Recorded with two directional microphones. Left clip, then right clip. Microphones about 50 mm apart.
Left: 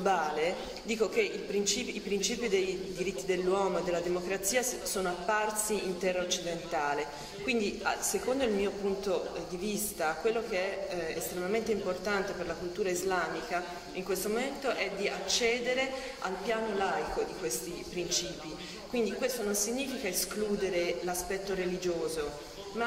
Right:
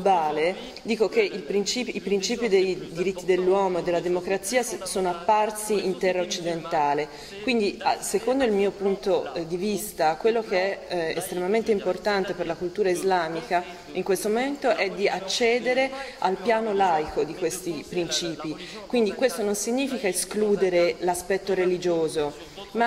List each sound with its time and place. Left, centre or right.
0.0 s a man's voice: left
22.8 s a man's voice: left